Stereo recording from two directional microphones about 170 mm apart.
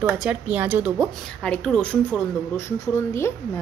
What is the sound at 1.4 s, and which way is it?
A woman's voice, 5° left (ahead or behind).